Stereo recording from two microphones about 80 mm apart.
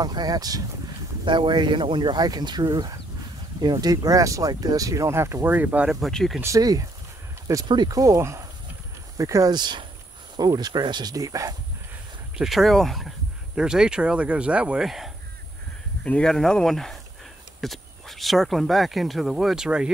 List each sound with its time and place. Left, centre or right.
0.0 s speech: right
1.2 s speech: right
5.5 s speech: right
5.9 s speech: centre
6.4 s speech: right
7.6 s speech: right
8.2 s speech: right
9.5 s speech: right
12.4 s speech: centre
14.9 s speech: centre
16.0 s speech: centre